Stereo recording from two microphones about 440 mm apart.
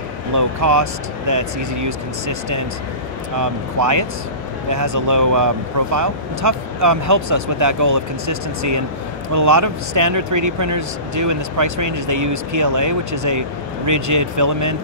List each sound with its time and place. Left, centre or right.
0.4 s speech: right
3.3 s speech: right